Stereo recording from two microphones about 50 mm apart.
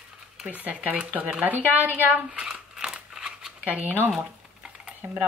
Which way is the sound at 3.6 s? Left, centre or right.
Right.